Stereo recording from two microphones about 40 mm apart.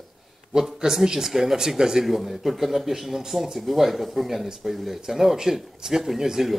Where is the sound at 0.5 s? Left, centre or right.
Centre.